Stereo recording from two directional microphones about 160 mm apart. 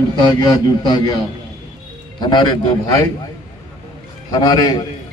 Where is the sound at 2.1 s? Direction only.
25° left (ahead or behind).